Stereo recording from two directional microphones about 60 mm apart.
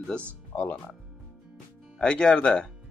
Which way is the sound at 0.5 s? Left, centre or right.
Left.